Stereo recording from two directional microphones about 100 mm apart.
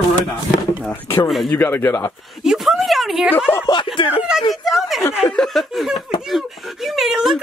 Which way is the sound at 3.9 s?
60° left (ahead or behind).